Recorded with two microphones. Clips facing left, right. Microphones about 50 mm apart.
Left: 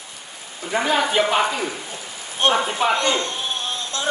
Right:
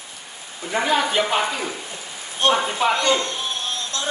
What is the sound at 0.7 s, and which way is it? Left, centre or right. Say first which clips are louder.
Speech: even; centre.